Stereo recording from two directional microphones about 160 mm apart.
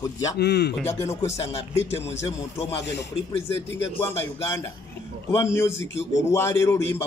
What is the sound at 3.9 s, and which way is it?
A man's voice, 15° left (ahead or behind).